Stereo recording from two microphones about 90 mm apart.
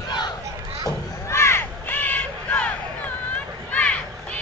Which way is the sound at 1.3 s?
30° left (ahead or behind).